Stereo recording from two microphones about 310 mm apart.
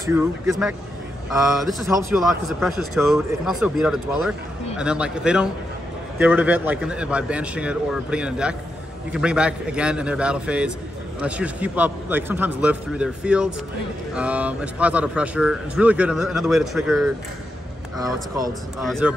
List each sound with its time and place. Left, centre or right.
0.0 s a man's voice: centre
18.8 s a man's voice: centre